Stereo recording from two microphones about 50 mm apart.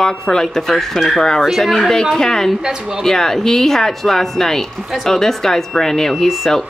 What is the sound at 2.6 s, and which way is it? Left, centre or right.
Speech, centre.